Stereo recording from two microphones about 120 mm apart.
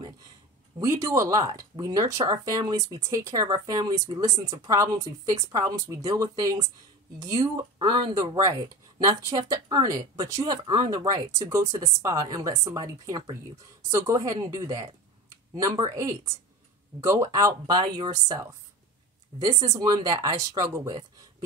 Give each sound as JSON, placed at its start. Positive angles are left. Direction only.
{"t": 0.7, "sound": "a woman's voice", "side_deg": -30}